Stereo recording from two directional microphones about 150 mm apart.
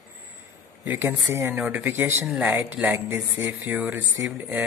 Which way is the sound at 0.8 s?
15° right (ahead or behind).